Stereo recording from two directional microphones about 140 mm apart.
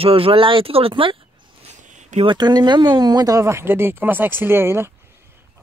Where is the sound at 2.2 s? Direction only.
30° right (ahead or behind).